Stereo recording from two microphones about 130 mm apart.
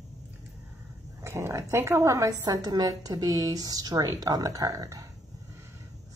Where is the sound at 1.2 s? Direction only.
20° right (ahead or behind).